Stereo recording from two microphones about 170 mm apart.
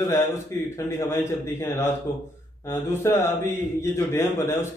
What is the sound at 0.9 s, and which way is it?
A man's voice, 15° left (ahead or behind).